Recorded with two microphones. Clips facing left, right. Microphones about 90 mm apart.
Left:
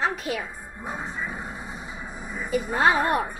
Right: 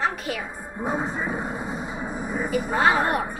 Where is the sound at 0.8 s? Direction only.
40° right (ahead or behind).